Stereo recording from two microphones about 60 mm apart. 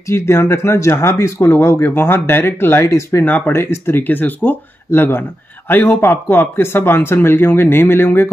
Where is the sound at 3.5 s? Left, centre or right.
Left.